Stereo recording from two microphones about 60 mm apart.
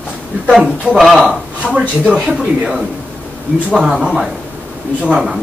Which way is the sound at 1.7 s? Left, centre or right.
Centre.